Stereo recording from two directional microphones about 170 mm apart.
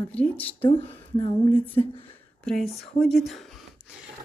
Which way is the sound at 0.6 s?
30° left (ahead or behind).